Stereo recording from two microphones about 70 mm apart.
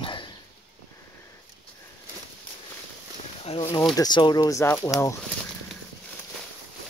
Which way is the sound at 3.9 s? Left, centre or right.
Left.